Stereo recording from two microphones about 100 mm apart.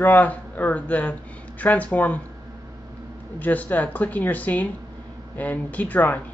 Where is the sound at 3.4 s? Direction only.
15° left (ahead or behind).